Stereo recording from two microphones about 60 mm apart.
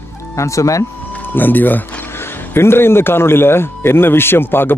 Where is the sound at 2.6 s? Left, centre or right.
Left.